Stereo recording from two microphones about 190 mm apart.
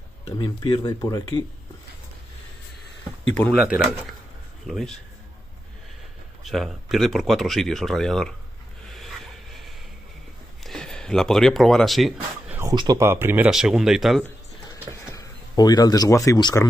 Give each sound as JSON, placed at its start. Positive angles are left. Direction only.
{"t": 0.4, "sound": "speech", "side_deg": 20}
{"t": 3.6, "sound": "speech", "side_deg": -5}
{"t": 6.4, "sound": "speech", "side_deg": 0}
{"t": 8.9, "sound": "dog", "side_deg": 0}
{"t": 10.6, "sound": "a sound", "side_deg": 0}
{"t": 12.5, "sound": "speech", "side_deg": -20}
{"t": 14.7, "sound": "a sound", "side_deg": 20}